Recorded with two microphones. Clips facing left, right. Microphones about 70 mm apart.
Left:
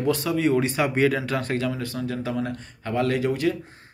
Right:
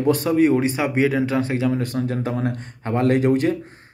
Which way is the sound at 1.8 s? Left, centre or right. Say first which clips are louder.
Right 5 dB; right.